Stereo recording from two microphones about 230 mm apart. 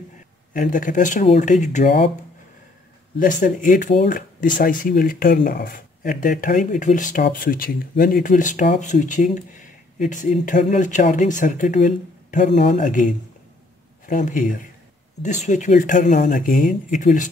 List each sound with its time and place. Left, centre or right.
0.5 s speech: left
3.2 s speech: left